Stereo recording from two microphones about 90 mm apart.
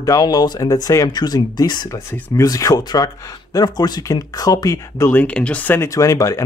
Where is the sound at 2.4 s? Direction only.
40° left (ahead or behind).